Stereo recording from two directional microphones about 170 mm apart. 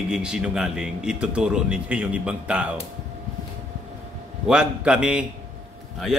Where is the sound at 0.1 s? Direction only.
5° right (ahead or behind).